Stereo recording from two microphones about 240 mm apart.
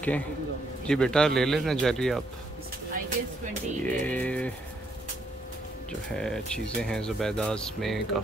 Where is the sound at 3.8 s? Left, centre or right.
Centre.